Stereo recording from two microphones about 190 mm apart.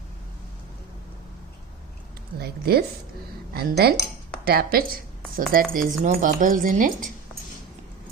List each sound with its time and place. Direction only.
2.3 s speech: 55° right (ahead or behind)